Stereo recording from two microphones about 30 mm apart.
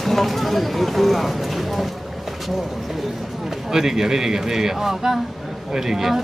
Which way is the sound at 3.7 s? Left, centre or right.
Centre.